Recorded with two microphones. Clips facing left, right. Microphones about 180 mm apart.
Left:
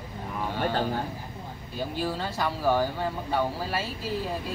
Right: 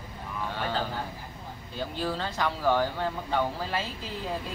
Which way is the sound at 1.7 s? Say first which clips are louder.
Left 1 dB; 10° left (ahead or behind).